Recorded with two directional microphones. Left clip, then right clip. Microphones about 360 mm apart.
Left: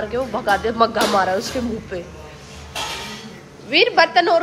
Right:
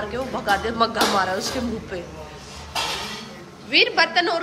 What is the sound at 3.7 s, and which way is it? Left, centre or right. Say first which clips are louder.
Speech: left 3 dB; centre.